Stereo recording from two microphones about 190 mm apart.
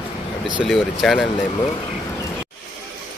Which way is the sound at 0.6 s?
Centre (ahead or behind).